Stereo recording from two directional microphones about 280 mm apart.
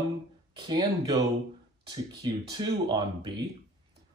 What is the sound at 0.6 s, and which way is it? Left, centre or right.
Speech, centre.